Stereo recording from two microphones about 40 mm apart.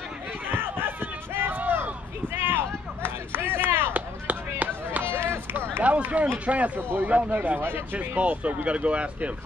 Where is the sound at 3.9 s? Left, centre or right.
Right.